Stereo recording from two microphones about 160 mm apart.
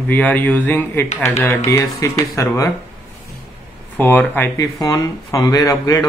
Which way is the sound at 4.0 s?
10° left (ahead or behind).